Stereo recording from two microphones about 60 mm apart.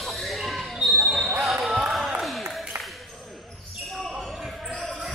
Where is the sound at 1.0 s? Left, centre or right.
Centre.